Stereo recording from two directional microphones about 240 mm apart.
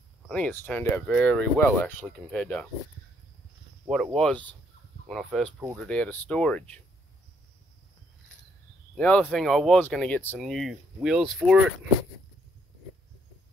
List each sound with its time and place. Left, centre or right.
0.3 s speech: centre
3.9 s speech: centre
8.9 s speech: centre